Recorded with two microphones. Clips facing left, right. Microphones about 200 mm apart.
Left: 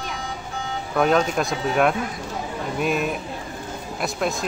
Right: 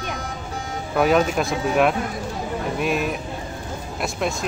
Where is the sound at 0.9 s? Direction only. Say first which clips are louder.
Right 1 dB; 5° right (ahead or behind).